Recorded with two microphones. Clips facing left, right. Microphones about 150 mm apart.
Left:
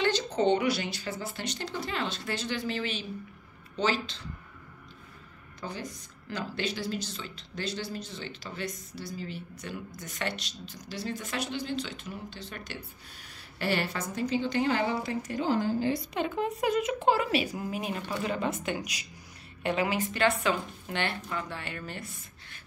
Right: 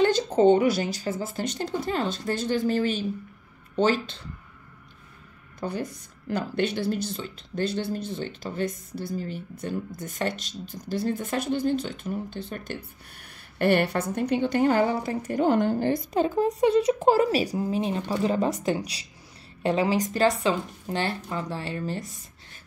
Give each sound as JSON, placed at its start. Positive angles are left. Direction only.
{"t": 0.0, "sound": "a woman's voice", "side_deg": -45}
{"t": 5.6, "sound": "a woman's voice", "side_deg": -55}
{"t": 15.3, "sound": "a woman's voice", "side_deg": -60}